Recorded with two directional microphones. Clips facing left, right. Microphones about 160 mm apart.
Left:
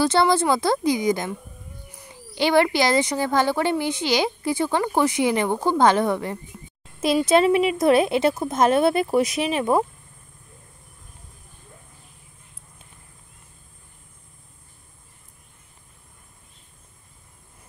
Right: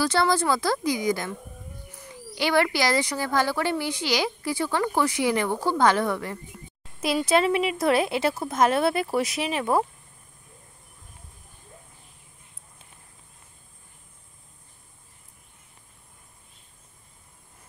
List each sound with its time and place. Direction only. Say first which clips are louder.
0.0 s speech: left 4 dB; 25° left (ahead or behind)